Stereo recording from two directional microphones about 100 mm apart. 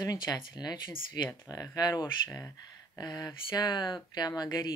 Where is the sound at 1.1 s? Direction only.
35° left (ahead or behind).